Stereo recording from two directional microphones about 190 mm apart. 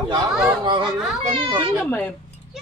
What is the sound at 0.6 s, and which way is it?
A man's voice, 25° right (ahead or behind).